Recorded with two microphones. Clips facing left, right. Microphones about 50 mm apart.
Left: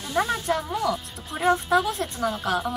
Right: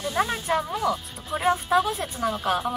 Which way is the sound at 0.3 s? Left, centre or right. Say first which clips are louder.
Even; centre.